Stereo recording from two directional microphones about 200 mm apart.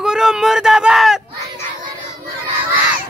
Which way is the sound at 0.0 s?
5° right (ahead or behind).